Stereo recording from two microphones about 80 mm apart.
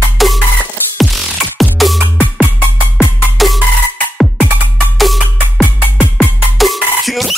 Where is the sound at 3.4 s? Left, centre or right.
Centre.